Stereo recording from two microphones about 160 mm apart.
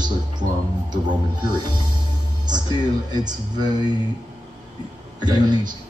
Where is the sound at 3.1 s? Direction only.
25° right (ahead or behind).